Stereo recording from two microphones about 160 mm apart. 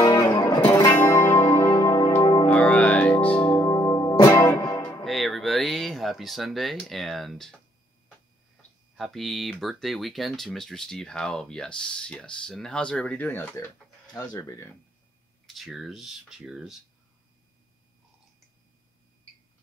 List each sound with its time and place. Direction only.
0.0 s music: 20° left (ahead or behind)
2.4 s music: 10° left (ahead or behind)
3.6 s music: 20° left (ahead or behind)
5.0 s a sound: centre (ahead or behind)
8.9 s speech: centre (ahead or behind); by 14.7 s 20° left (ahead or behind)
15.4 s speech: centre (ahead or behind)